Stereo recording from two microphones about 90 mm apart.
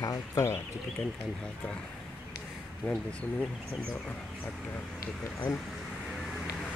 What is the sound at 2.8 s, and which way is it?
Speech, 15° left (ahead or behind).